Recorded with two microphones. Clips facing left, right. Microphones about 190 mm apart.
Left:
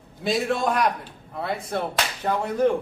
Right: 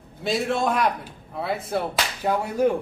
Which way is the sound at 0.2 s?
Centre (ahead or behind).